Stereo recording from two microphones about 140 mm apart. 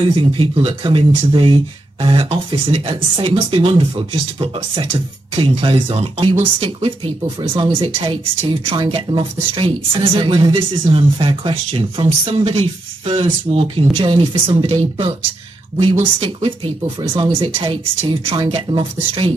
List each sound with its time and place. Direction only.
0.0 s speech: 35° right (ahead or behind)
15.8 s speech: 35° right (ahead or behind)